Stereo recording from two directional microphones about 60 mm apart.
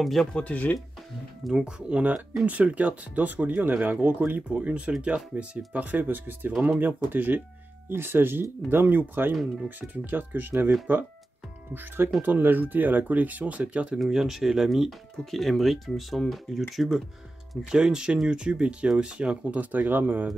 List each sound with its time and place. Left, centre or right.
0.0 s speech: centre
0.3 s speech: left
1.6 s speech: centre; by 9.3 s right
9.3 s speech: centre
9.7 s speech: right
12.2 s speech: right
13.9 s speech: centre; by 20.2 s right